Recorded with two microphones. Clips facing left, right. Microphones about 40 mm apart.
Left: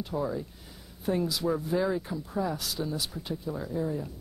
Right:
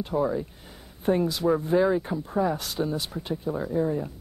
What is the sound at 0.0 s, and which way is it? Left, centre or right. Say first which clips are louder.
Speech: right 6 dB; right.